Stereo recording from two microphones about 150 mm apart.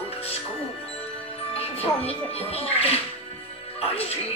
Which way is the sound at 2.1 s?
40° left (ahead or behind).